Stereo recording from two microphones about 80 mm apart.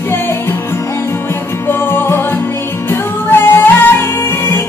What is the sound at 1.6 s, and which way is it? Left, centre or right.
Music, left.